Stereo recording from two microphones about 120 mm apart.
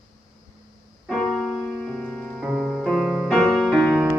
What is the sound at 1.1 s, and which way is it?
Keyboard, centre (ahead or behind).